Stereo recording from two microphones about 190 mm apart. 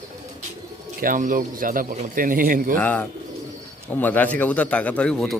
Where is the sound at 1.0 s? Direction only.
45° right (ahead or behind).